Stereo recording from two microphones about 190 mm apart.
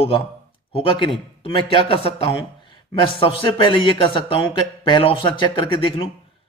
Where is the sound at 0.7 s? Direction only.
25° left (ahead or behind).